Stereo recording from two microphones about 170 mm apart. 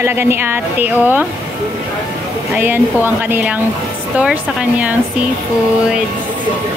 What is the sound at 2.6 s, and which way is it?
Speech, 10° right (ahead or behind).